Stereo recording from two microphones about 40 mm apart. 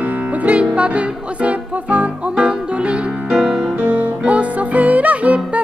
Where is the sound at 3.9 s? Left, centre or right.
Right.